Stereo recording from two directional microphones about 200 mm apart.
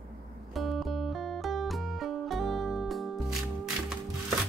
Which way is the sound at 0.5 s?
Centre (ahead or behind).